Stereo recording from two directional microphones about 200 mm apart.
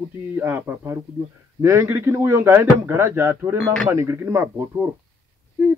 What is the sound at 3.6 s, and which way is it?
Speech, 5° left (ahead or behind).